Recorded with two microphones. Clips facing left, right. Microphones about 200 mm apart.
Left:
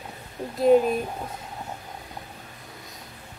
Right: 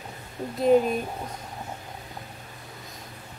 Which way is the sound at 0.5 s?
Centre (ahead or behind).